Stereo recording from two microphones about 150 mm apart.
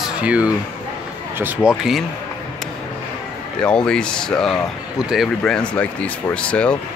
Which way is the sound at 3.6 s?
5° left (ahead or behind).